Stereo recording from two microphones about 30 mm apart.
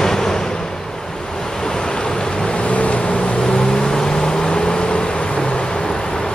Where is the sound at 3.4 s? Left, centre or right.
Left.